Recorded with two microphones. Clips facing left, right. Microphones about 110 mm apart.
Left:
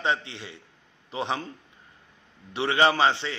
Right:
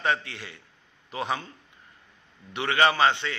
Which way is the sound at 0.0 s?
25° left (ahead or behind).